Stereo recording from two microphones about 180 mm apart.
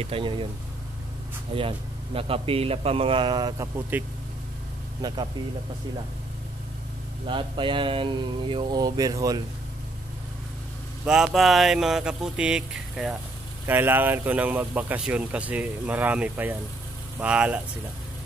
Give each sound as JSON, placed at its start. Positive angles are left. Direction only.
{"t": 0.0, "sound": "speech", "side_deg": -30}
{"t": 1.5, "sound": "a man's voice", "side_deg": -30}
{"t": 5.0, "sound": "speech", "side_deg": -25}
{"t": 7.2, "sound": "speech", "side_deg": -30}
{"t": 11.1, "sound": "speech", "side_deg": 0}